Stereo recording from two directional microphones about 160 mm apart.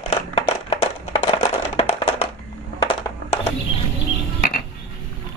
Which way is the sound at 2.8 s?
40° left (ahead or behind).